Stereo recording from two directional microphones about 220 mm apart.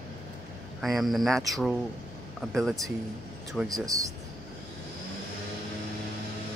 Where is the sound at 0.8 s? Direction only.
Centre (ahead or behind).